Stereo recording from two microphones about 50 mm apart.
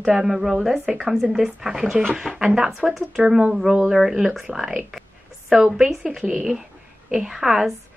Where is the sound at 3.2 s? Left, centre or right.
Right.